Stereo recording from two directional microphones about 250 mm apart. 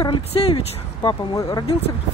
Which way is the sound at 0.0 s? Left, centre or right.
Left.